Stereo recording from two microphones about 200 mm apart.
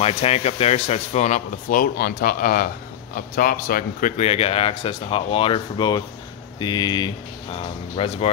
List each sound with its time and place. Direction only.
0.0 s speech: 30° left (ahead or behind)